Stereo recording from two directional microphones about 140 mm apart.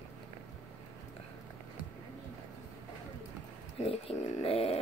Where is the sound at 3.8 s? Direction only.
50° left (ahead or behind).